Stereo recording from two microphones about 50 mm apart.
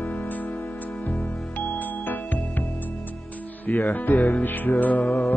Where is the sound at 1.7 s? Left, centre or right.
Left.